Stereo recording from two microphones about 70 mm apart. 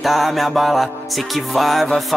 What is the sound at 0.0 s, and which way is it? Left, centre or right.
Music, centre.